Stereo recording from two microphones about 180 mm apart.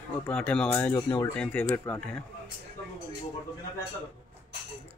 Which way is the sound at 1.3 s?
5° left (ahead or behind).